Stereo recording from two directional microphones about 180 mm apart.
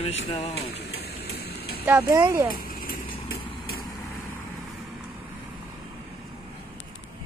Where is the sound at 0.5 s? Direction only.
65° left (ahead or behind).